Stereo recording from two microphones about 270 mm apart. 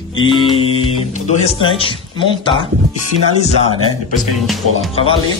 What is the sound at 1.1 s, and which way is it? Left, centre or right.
Speech, left.